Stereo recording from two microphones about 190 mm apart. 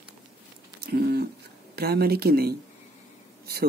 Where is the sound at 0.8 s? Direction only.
55° right (ahead or behind).